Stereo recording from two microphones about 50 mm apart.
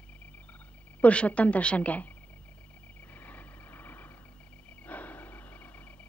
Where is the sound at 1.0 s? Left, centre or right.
Left.